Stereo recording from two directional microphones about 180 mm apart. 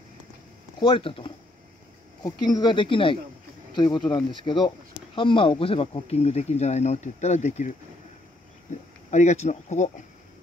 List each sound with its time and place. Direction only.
0.7 s speech: 30° left (ahead or behind)
2.4 s speech: 25° left (ahead or behind); by 7.7 s 40° left (ahead or behind)
9.1 s speech: 40° left (ahead or behind)